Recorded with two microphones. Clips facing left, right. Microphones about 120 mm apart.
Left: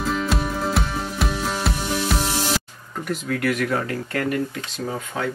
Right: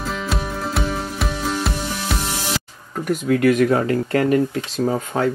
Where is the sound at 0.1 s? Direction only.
Centre (ahead or behind).